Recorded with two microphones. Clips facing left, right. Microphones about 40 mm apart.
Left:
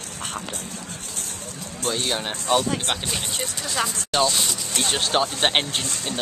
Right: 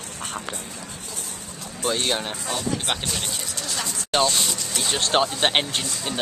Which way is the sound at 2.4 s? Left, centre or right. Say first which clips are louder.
Left 6 dB; left.